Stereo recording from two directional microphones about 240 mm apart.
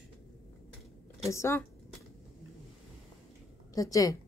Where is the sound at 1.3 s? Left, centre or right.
Centre.